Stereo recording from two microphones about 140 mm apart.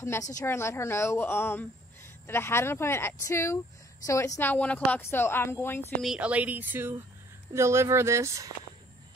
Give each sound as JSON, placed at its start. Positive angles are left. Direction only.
{"t": 0.0, "sound": "a woman's voice", "side_deg": 20}
{"t": 6.0, "sound": "speech", "side_deg": -10}